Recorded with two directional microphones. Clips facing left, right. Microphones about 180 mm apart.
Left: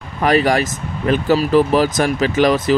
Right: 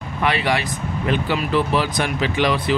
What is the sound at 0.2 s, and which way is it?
Speech, 40° left (ahead or behind).